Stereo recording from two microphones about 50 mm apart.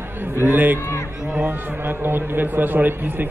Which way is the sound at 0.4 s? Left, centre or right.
Right.